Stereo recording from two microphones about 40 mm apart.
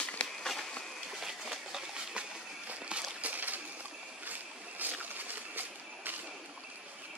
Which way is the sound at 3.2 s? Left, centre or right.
Right.